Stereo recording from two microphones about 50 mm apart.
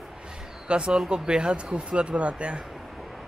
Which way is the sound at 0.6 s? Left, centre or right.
Right.